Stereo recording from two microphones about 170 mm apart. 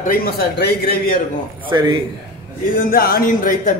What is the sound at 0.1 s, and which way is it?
A man's voice, 65° left (ahead or behind).